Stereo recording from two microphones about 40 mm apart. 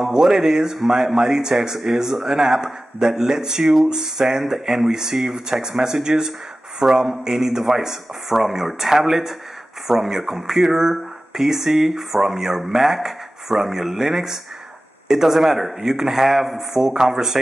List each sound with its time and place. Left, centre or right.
0.0 s speech: centre
3.6 s speech: centre
16.8 s speech: centre